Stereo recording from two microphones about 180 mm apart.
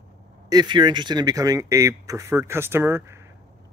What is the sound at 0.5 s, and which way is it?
Speech, 25° right (ahead or behind).